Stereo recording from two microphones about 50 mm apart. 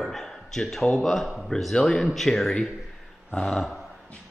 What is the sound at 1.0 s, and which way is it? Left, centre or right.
Speech, centre.